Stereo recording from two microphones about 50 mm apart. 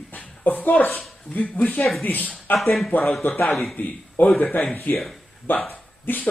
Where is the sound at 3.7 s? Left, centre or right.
Left.